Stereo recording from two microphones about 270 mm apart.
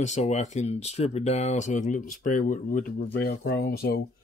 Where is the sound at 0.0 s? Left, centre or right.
Left.